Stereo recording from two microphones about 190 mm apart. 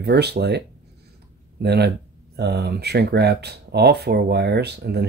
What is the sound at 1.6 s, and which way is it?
Speech, 60° right (ahead or behind).